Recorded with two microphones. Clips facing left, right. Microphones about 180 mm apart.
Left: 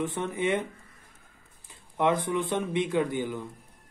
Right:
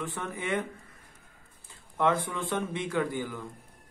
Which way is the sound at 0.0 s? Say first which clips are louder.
Left 6 dB; 20° left (ahead or behind).